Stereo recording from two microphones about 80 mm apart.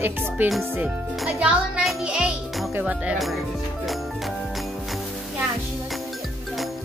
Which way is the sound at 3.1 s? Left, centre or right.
Centre.